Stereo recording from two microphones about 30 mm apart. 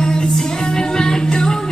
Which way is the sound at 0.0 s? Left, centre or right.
Left.